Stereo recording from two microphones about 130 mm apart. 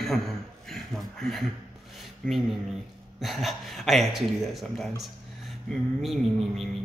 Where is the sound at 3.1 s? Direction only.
Centre (ahead or behind).